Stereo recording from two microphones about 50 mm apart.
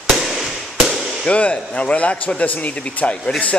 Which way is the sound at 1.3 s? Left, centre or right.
Left.